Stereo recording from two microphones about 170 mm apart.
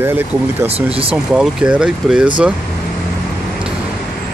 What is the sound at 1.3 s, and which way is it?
Speech, 5° right (ahead or behind).